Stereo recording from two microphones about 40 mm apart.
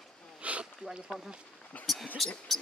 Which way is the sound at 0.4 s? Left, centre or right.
Right.